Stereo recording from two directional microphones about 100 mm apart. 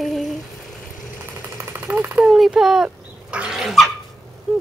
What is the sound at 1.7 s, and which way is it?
Speech, 20° right (ahead or behind).